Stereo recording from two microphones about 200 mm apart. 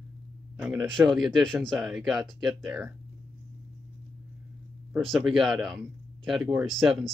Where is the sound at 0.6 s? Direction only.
Centre (ahead or behind).